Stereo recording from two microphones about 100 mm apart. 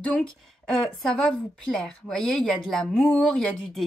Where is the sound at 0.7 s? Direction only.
10° left (ahead or behind).